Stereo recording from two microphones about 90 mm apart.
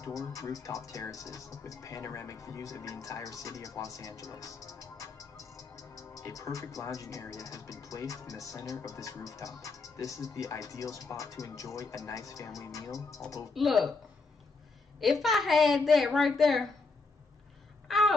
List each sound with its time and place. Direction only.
0.0 s speech: 40° left (ahead or behind)
13.5 s a woman's voice: centre (ahead or behind)
15.0 s a woman's voice: centre (ahead or behind)
17.8 s a sound: centre (ahead or behind)